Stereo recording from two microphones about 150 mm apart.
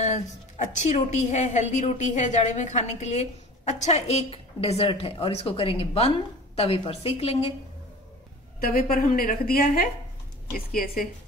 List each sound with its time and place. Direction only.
0.0 s a woman's voice: 50° left (ahead or behind)
8.5 s a woman's voice: 75° left (ahead or behind)